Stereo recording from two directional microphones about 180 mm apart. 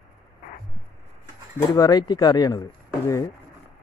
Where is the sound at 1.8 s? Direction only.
25° left (ahead or behind).